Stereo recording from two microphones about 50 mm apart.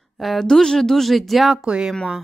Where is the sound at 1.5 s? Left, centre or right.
Centre.